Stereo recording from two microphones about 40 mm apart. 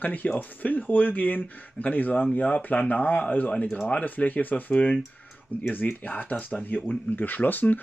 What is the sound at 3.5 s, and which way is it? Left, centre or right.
Speech, left.